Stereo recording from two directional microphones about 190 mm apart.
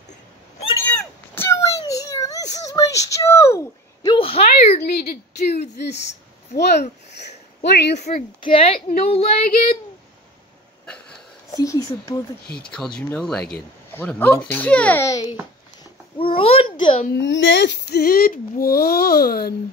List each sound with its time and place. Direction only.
0.7 s a sound: 10° left (ahead or behind); by 4.7 s 30° left (ahead or behind)
4.8 s a sound: 55° left (ahead or behind)
6.5 s a child's voice: 60° left (ahead or behind)
8.4 s a woman's voice: 25° left (ahead or behind)
11.5 s speech: 15° left (ahead or behind)
12.6 s speech: 5° left (ahead or behind)
15.8 s a child's voice: 30° left (ahead or behind)
17.1 s a child's voice: 70° left (ahead or behind); by 19.5 s 55° left (ahead or behind)